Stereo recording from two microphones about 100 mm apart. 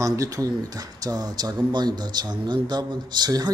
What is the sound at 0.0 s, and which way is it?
Speech, 35° right (ahead or behind).